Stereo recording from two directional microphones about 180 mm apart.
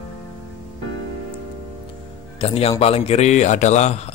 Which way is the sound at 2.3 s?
35° left (ahead or behind).